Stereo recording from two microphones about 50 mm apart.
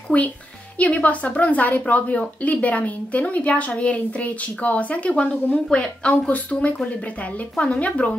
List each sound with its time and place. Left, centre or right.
0.1 s a woman's voice: left